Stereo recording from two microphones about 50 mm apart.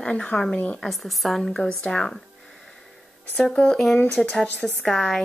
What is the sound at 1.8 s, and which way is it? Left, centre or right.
Speech, centre.